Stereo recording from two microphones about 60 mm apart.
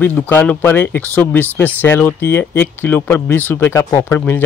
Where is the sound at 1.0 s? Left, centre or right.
Left.